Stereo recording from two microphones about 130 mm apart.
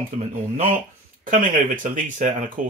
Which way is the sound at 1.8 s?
75° right (ahead or behind).